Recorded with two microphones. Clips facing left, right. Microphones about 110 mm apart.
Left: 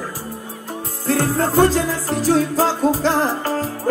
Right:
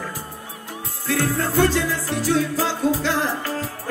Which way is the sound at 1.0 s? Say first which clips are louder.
Left 4 dB; 40° left (ahead or behind).